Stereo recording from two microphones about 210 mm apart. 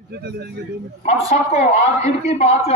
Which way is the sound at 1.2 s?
30° left (ahead or behind).